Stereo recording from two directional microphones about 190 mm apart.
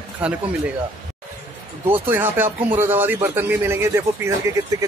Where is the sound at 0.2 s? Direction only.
5° right (ahead or behind).